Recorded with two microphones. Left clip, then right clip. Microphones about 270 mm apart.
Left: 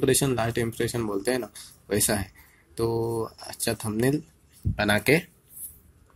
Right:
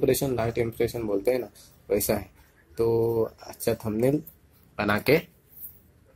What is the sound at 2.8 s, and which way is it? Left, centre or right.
Speech, left.